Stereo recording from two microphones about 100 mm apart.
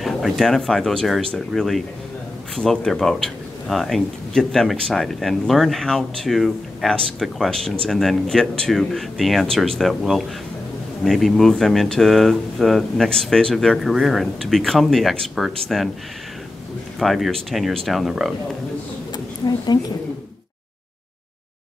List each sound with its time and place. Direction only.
0.0 s speech: centre (ahead or behind)
17.0 s speech: centre (ahead or behind)
19.1 s a sound: 40° left (ahead or behind)